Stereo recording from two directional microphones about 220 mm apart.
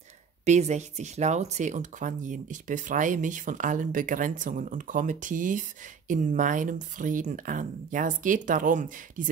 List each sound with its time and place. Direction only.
0.5 s speech: 30° right (ahead or behind)